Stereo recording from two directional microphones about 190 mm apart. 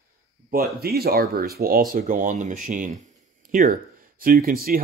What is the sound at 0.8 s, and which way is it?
Speech, 55° right (ahead or behind).